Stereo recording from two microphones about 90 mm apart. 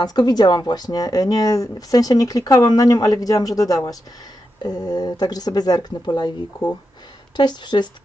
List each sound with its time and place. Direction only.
0.0 s speech: 50° left (ahead or behind)
7.3 s speech: 55° left (ahead or behind)